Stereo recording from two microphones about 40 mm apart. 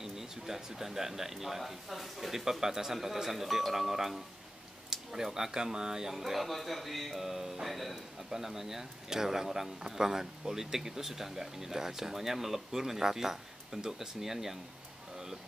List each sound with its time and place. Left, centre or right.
0.0 s speech: centre
8.3 s speech: centre